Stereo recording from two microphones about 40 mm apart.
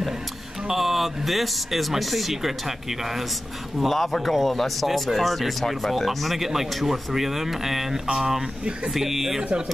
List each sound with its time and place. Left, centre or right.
0.7 s speech: centre
9.4 s speech: right